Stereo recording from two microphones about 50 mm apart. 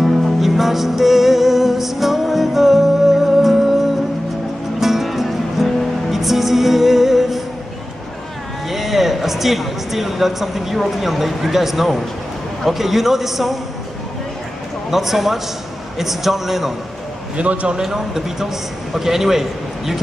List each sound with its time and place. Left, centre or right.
0.0 s music: centre
8.6 s a man's voice: centre
14.9 s a man's voice: centre
17.4 s a man's voice: right
17.8 s speech: centre